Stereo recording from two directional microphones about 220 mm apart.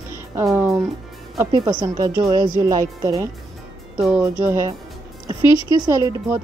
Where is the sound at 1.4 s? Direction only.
15° right (ahead or behind).